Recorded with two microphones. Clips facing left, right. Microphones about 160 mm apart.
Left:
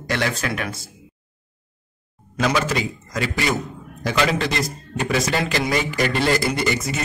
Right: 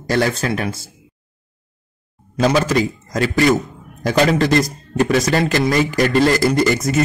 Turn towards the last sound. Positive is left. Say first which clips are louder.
# right 7 dB
turn(degrees=-45)  # may be behind; listen again after turning